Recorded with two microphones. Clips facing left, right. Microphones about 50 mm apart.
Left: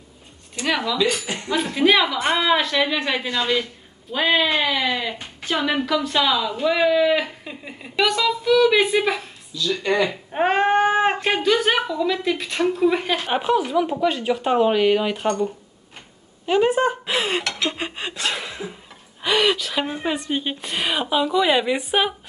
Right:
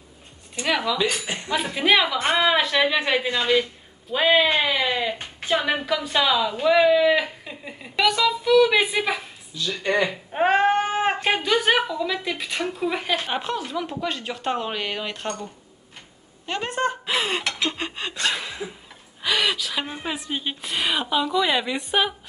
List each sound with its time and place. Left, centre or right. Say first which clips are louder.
0.7 s a woman's voice: even; centre
1.2 s speech: left 1 dB; right
1.5 s a woman's voice: left 2 dB; centre
5.9 s a woman's voice: left 2 dB; centre
9.7 s speech: left 2 dB; right
10.3 s a woman's voice: right 1 dB; centre
10.7 s a sound: left 4 dB; centre
11.2 s a woman's voice: left 1 dB; centre
16.4 s a woman's voice: left 7 dB; centre
17.7 s a woman's voice: left 1 dB; centre